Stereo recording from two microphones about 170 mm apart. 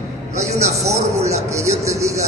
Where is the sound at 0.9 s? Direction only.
15° right (ahead or behind).